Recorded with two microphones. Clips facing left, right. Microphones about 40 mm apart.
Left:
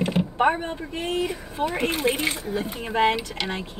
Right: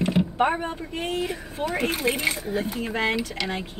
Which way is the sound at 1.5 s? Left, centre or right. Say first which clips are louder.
Left 1 dB; left.